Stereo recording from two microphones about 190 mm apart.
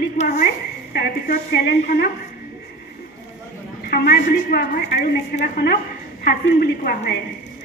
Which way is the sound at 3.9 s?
55° left (ahead or behind).